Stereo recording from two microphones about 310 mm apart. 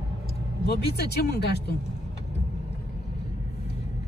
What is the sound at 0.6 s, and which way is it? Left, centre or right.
Speech, left.